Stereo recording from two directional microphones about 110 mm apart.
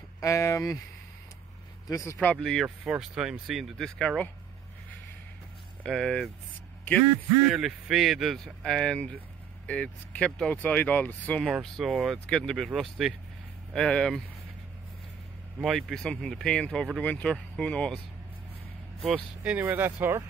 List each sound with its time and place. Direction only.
0.2 s speech: 30° left (ahead or behind)
1.9 s speech: 30° left (ahead or behind)
2.1 s speech: 5° left (ahead or behind)
5.9 s speech: 5° left (ahead or behind)
7.4 s speech: 5° right (ahead or behind); by 11.4 s 15° left (ahead or behind)
11.4 s speech: centre (ahead or behind)
15.6 s speech: centre (ahead or behind)
19.4 s speech: 15° right (ahead or behind)